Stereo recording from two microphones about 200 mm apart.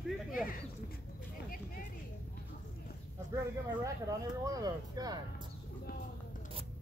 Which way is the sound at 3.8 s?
15° right (ahead or behind).